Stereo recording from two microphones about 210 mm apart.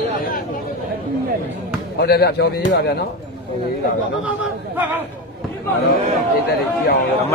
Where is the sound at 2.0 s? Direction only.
50° left (ahead or behind).